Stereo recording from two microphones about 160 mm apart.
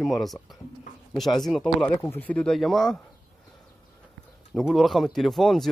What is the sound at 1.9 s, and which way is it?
Speech, 15° left (ahead or behind).